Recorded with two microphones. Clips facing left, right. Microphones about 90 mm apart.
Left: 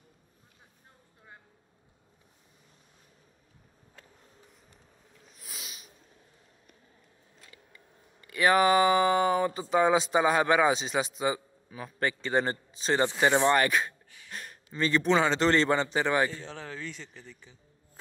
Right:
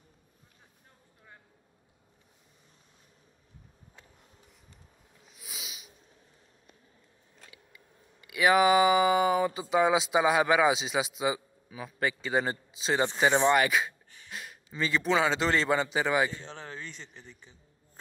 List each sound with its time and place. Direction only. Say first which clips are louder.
5.3 s snort: right 1 dB; centre (ahead or behind)
7.5 s tick: left 1 dB; 5° right (ahead or behind)
13.5 s a man's voice: even; 5° right (ahead or behind)
16.3 s speech: left 2 dB; 30° right (ahead or behind)